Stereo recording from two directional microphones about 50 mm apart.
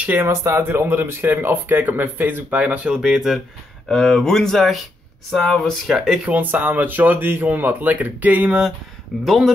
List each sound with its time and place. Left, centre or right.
0.2 s speech: right
3.0 s speech: centre
3.9 s speech: centre
5.9 s speech: centre
6.3 s speech: right
9.2 s speech: centre